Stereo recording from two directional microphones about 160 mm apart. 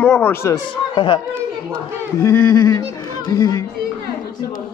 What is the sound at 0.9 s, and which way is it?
Speech, 30° left (ahead or behind).